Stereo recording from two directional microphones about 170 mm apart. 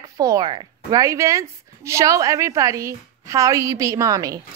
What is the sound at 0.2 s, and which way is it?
A woman's voice, 20° right (ahead or behind).